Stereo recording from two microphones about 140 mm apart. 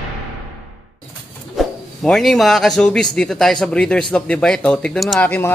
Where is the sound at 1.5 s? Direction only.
5° left (ahead or behind).